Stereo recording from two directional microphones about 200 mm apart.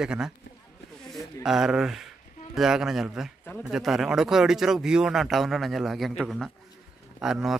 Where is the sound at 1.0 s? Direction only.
Centre (ahead or behind).